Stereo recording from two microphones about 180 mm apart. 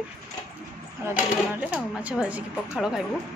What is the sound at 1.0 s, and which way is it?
Speech, 10° right (ahead or behind).